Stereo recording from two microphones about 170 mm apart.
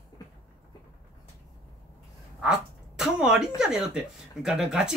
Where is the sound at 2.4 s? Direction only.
5° right (ahead or behind).